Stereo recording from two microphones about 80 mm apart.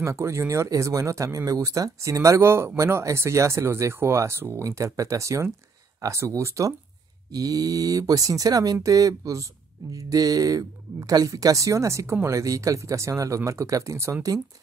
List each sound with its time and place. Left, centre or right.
0.0 s speech: right
7.3 s speech: right